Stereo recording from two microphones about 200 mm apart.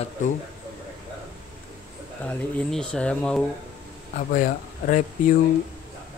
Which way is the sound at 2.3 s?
5° left (ahead or behind).